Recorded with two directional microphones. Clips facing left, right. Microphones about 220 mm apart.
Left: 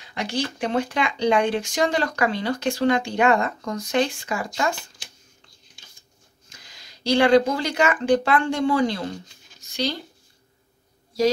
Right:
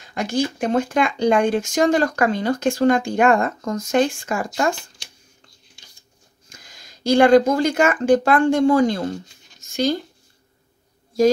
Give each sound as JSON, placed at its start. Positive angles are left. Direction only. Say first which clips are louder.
{"t": 0.0, "sound": "speech", "louder": "right 5 dB", "side_deg": -45}
{"t": 6.5, "sound": "speech", "louder": "right 3 dB", "side_deg": -50}